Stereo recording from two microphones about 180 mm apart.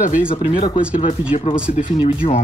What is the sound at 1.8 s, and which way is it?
Speech, 30° left (ahead or behind).